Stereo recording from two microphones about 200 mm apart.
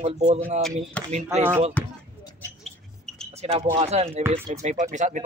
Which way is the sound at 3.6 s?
35° right (ahead or behind).